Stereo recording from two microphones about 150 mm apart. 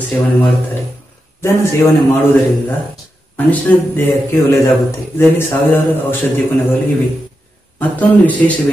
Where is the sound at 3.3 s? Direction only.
10° left (ahead or behind).